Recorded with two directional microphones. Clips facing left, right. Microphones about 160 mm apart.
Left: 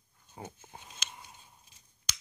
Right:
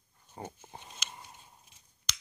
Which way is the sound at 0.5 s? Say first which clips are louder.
Right 2 dB; 15° right (ahead or behind).